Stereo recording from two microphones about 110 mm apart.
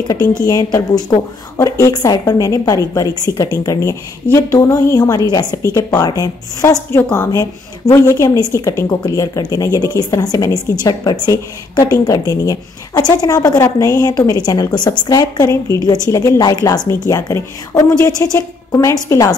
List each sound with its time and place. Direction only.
0.4 s a woman's voice: 35° left (ahead or behind)